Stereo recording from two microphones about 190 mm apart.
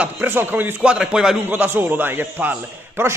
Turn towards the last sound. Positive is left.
turn(degrees=-10)  # may be behind; listen again after turning